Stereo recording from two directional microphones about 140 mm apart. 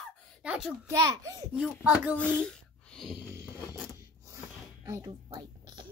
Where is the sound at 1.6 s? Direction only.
5° right (ahead or behind).